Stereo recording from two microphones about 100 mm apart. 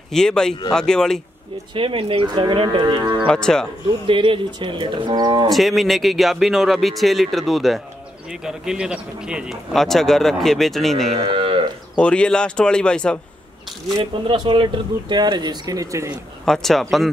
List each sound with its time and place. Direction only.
0.1 s speech: 5° left (ahead or behind)
1.7 s speech: 60° right (ahead or behind)
3.3 s speech: 5° left (ahead or behind)
4.1 s speech: 55° right (ahead or behind)
5.5 s speech: centre (ahead or behind)
11.1 s moo: 65° right (ahead or behind)
12.0 s speech: 10° left (ahead or behind)
13.9 s speech: 55° right (ahead or behind); by 16.1 s 35° right (ahead or behind)
16.4 s speech: 5° left (ahead or behind)